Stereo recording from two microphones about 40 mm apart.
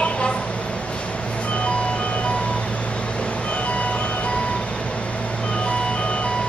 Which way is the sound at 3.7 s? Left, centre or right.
Left.